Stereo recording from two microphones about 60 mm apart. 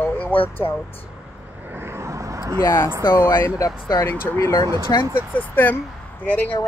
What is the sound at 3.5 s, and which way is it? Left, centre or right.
Speech, left.